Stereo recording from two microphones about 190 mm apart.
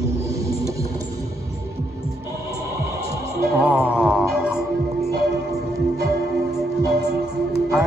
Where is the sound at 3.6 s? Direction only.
5° right (ahead or behind).